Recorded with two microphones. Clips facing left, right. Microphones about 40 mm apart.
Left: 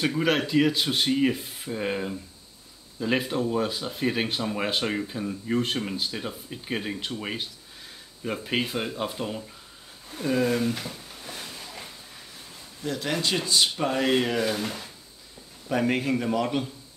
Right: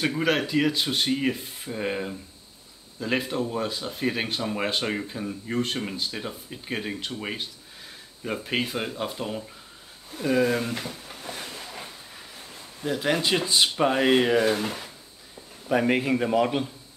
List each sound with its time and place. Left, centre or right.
0.0 s speech: centre
10.2 s a man's voice: centre
11.2 s a sound: centre
12.8 s a man's voice: centre